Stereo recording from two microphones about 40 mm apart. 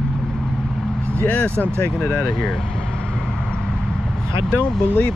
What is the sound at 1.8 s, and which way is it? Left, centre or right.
Speech, left.